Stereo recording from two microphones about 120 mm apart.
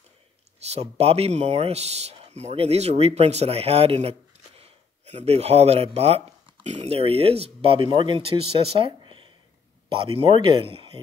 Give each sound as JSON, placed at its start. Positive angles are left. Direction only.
{"t": 0.7, "sound": "speech", "side_deg": -60}